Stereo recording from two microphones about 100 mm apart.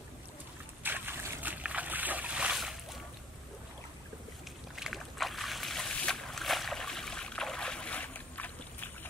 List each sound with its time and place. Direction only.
0.8 s boat: 20° right (ahead or behind); by 3.0 s centre (ahead or behind)
4.7 s boat: centre (ahead or behind); by 8.9 s 15° left (ahead or behind)